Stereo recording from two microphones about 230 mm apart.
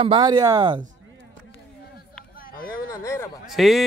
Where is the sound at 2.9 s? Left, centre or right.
Centre.